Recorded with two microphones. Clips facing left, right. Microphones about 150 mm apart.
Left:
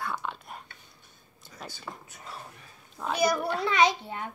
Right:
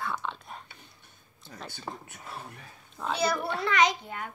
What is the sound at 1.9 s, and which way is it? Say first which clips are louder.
Speech: right 4 dB; 35° right (ahead or behind).